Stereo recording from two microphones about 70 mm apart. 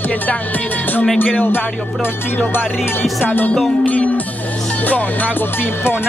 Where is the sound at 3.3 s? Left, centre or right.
Left.